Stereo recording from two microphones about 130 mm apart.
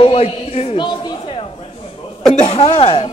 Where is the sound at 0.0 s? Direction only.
50° left (ahead or behind).